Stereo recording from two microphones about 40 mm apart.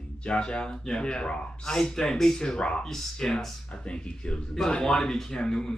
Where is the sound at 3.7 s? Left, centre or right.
Left.